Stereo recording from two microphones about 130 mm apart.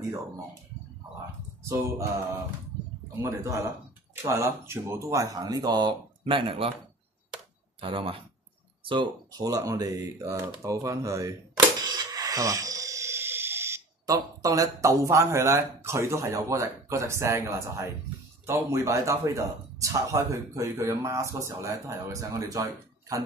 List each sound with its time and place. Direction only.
1.6 s a man's voice: 20° right (ahead or behind)
3.2 s a man's voice: 20° right (ahead or behind); by 6.7 s 40° right (ahead or behind)
7.8 s a man's voice: 40° right (ahead or behind); by 23.2 s 25° right (ahead or behind)